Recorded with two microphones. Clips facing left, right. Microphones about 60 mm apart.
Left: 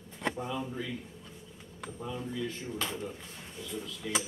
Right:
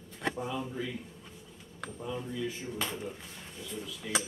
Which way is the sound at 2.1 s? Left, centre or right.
Centre.